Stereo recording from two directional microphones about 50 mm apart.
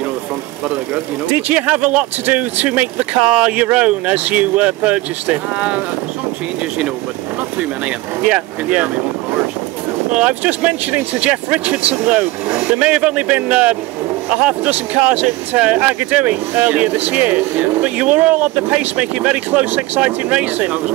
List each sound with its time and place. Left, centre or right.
1.5 s speech: right
8.3 s speech: right
10.1 s speech: right
12.9 s speech: centre
13.3 s speech: right
15.6 s speech: right
16.9 s speech: right